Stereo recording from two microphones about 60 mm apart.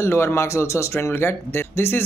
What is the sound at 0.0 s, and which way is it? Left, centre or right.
Speech, left.